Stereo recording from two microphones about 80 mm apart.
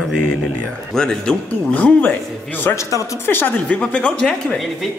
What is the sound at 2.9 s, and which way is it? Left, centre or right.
Speech, left.